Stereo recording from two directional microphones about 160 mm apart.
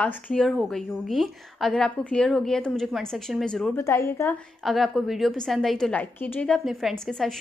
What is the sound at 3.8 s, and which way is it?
Speech, 15° left (ahead or behind).